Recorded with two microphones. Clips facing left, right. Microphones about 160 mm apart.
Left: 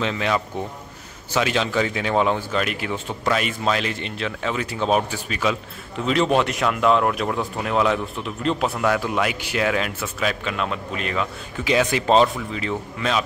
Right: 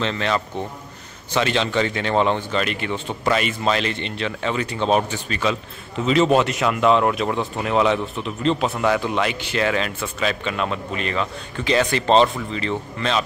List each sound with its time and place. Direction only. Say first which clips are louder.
0.0 s a man's voice: even; 10° left (ahead or behind)